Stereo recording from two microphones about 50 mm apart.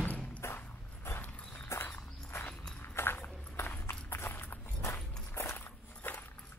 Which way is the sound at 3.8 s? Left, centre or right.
Left.